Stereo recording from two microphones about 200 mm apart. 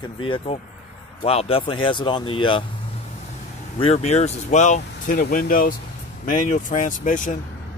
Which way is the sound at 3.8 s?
30° left (ahead or behind).